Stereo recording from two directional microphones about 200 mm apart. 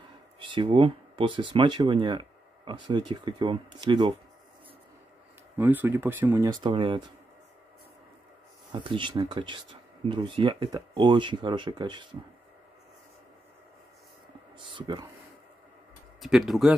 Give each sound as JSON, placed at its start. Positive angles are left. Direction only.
{"t": 0.4, "sound": "speech", "side_deg": -25}
{"t": 5.6, "sound": "speech", "side_deg": -10}
{"t": 8.7, "sound": "speech", "side_deg": -25}
{"t": 14.7, "sound": "speech", "side_deg": -25}
{"t": 16.2, "sound": "speech", "side_deg": 0}